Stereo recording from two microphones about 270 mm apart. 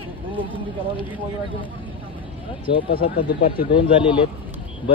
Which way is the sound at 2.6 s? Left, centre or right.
Centre.